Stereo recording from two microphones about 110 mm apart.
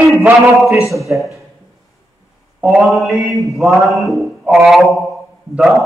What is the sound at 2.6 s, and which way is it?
Mantra, 5° right (ahead or behind).